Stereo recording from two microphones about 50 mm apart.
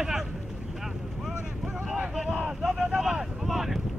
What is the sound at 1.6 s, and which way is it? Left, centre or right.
Boat, right.